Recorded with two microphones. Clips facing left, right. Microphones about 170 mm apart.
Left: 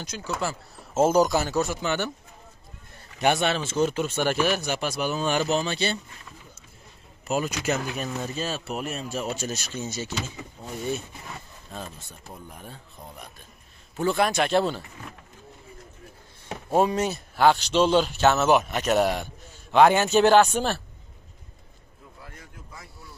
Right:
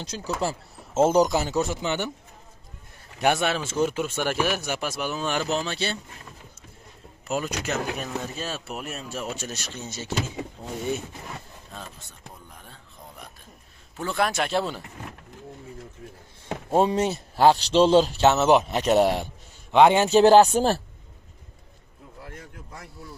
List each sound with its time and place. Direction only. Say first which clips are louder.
0.0 s a man's voice: right 2 dB; 30° right (ahead or behind)
1.1 s speech: even; 20° right (ahead or behind)
3.2 s speech: even; 5° right (ahead or behind)
7.2 s speech: left 2 dB; 5° left (ahead or behind)
10.6 s speech: right 2 dB; 25° right (ahead or behind)
13.9 s speech: left 3 dB; centre (ahead or behind)
16.8 s a man's voice: right 1 dB; 25° right (ahead or behind)